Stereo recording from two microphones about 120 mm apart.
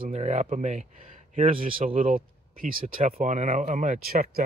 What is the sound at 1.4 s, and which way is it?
Speech, 60° right (ahead or behind).